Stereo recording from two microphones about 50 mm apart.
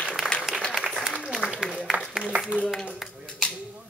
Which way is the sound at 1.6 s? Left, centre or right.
Centre.